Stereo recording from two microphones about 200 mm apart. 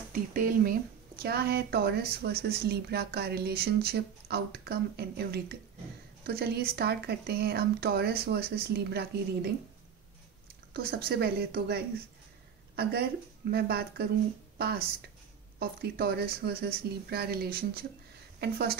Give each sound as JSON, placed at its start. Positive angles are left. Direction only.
{"t": 0.1, "sound": "speech", "side_deg": -45}
{"t": 10.7, "sound": "speech", "side_deg": -50}
{"t": 13.5, "sound": "a woman's voice", "side_deg": -55}